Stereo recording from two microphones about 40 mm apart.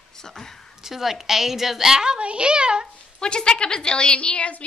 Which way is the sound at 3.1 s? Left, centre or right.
Left.